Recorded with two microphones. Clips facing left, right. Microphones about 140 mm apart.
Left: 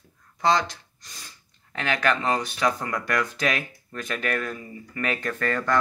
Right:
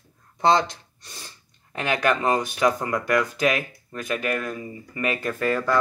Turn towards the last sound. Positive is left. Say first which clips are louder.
# right 2 dB
turn(degrees=-10)  # may be behind; listen again after turning